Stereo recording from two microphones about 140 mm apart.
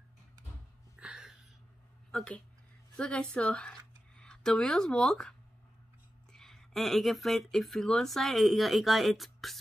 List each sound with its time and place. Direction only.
0.9 s a sound: 5° right (ahead or behind)
2.0 s a woman's voice: 5° left (ahead or behind)
6.3 s speech: centre (ahead or behind)